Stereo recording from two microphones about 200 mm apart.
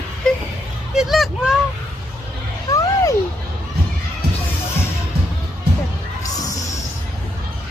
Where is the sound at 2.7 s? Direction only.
15° left (ahead or behind).